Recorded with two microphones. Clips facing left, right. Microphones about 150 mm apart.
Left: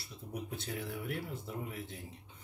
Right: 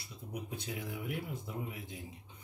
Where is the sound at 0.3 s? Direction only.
15° right (ahead or behind).